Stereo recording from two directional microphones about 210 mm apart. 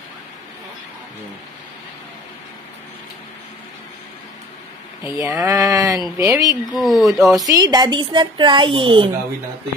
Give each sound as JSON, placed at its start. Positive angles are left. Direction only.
{"t": 5.0, "sound": "speech", "side_deg": -15}
{"t": 6.7, "sound": "speech", "side_deg": 0}
{"t": 7.4, "sound": "a woman's voice", "side_deg": -20}